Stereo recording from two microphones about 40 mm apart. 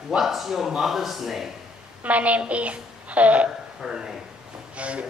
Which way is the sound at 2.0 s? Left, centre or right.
Right.